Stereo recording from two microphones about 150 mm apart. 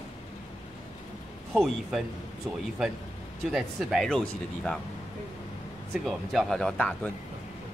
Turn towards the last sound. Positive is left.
turn(degrees=5)  # may be behind; listen again after turning